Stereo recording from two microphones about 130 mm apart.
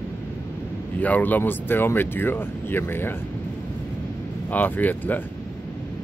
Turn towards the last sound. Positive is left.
turn(degrees=15)  # may be behind; listen again after turning